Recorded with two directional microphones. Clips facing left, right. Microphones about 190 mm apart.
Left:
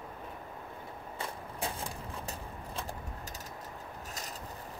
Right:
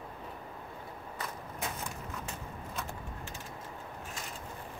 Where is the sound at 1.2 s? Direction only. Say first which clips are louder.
Left 2 dB; 30° left (ahead or behind).